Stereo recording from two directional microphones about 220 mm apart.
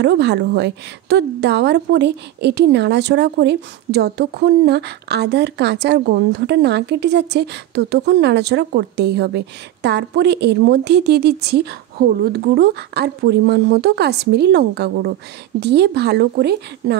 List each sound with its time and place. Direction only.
0.0 s a woman's voice: 50° right (ahead or behind)